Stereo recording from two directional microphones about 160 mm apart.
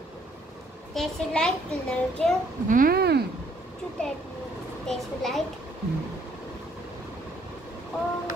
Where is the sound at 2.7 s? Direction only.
65° right (ahead or behind); by 3.2 s 85° right.